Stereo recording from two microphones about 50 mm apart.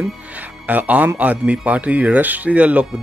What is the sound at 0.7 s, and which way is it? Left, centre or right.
Speech, right.